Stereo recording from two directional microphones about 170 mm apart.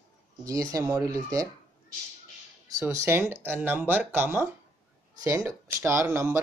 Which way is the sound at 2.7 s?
15° right (ahead or behind).